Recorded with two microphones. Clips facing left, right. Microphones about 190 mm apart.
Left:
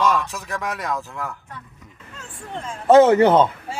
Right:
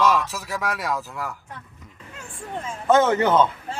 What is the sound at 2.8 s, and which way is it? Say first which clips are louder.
Speech: left 6 dB; 30° left (ahead or behind).